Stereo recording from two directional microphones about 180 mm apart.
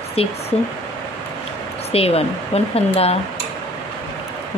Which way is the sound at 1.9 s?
35° left (ahead or behind).